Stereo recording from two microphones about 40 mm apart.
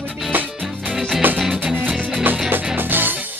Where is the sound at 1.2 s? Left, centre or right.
Right.